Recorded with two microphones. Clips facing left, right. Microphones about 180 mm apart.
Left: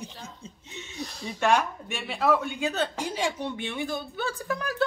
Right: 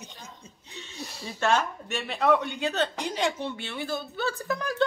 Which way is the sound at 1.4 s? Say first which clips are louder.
Left 1 dB; 15° left (ahead or behind).